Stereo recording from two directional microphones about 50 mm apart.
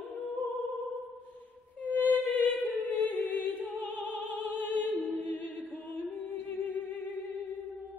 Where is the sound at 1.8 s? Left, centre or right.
Left.